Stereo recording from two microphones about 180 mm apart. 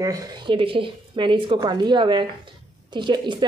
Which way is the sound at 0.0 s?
20° right (ahead or behind).